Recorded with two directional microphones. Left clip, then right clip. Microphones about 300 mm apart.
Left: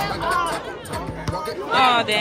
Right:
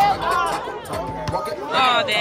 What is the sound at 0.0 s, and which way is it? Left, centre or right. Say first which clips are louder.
Music: right 4 dB; right.